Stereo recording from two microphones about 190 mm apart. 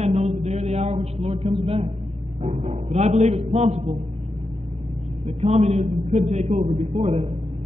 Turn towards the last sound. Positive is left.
turn(degrees=-30)  # may be behind; listen again after turning